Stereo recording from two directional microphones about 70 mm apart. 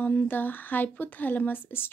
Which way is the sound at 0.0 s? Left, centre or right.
Left.